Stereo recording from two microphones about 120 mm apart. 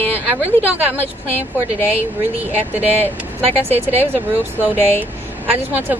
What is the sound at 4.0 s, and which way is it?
Speech, 15° right (ahead or behind).